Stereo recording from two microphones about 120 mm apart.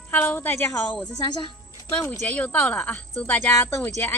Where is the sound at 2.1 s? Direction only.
10° left (ahead or behind).